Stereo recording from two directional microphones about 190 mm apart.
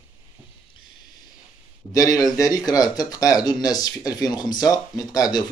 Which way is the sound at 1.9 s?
20° left (ahead or behind).